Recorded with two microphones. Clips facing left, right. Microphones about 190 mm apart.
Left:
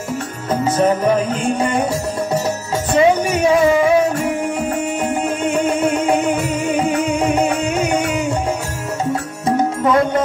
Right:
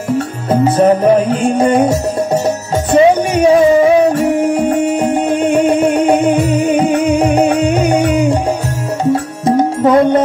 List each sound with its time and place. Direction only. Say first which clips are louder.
0.7 s music: right 5 dB; 10° right (ahead or behind)
1.6 s music: right 7 dB; 40° right (ahead or behind)
9.8 s music: right 6 dB; 40° right (ahead or behind)